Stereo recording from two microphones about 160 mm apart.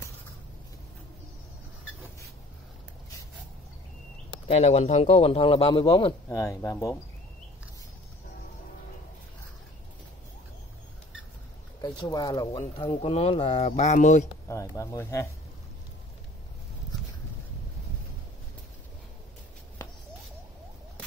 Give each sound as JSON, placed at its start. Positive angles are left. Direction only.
{"t": 4.3, "sound": "a man's voice", "side_deg": 40}
{"t": 6.2, "sound": "speech", "side_deg": 20}
{"t": 11.8, "sound": "speech", "side_deg": 25}
{"t": 13.0, "sound": "a man's voice", "side_deg": 40}
{"t": 14.5, "sound": "speech", "side_deg": 20}